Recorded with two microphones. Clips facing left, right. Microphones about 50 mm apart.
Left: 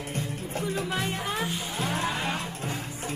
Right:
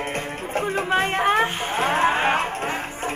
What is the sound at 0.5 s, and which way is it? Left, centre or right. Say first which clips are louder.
Music: right 9 dB; right.